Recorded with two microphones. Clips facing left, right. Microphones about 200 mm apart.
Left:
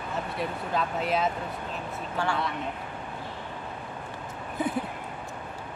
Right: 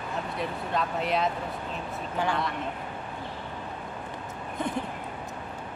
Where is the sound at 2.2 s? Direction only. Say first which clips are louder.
Right 1 dB; 15° right (ahead or behind).